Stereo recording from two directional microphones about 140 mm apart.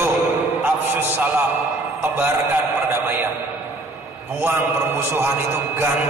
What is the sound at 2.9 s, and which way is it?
Speech, 15° right (ahead or behind).